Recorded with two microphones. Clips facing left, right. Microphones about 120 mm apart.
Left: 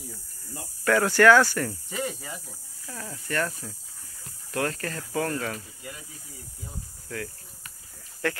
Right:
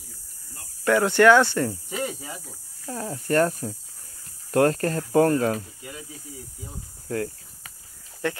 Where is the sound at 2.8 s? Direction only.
35° right (ahead or behind).